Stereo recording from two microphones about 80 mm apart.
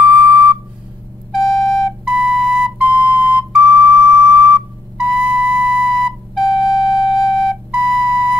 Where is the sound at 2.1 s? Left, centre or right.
Centre.